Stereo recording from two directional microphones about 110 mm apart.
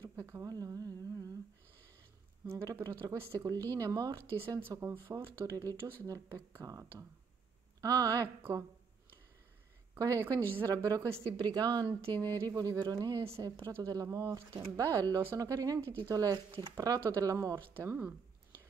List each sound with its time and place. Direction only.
0.0 s humming: 30° right (ahead or behind)
2.4 s speech: 30° right (ahead or behind)
4.6 s speech: 20° right (ahead or behind)
8.4 s speech: 20° right (ahead or behind)
9.9 s speech: 30° right (ahead or behind)
17.7 s speech: 20° right (ahead or behind)